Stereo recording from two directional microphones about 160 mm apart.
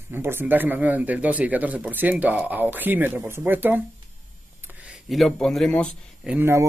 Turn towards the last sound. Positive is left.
turn(degrees=-15)  # may be behind; listen again after turning